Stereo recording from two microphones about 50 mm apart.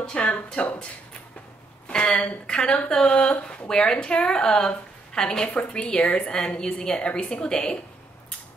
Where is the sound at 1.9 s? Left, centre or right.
Centre.